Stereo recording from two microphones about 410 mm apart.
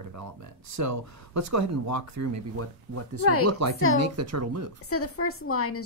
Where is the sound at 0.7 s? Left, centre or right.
Right.